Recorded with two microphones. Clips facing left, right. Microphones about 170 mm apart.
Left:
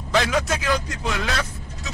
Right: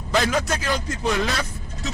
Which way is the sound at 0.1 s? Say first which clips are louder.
Even; centre (ahead or behind).